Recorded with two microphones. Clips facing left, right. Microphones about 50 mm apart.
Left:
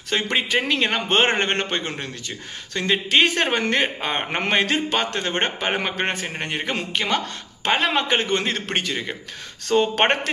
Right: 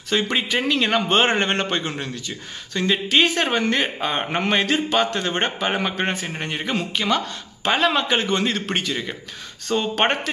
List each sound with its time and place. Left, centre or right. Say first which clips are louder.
0.1 s a man's voice: right 1 dB; left
0.6 s a man's voice: right 3 dB; left
1.0 s a man's voice: right 1 dB; left
2.7 s a man's voice: even; left